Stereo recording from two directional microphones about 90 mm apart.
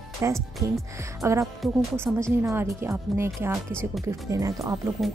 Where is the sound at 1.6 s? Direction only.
Centre (ahead or behind).